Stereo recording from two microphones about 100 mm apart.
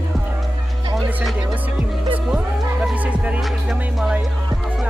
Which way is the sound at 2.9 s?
15° right (ahead or behind).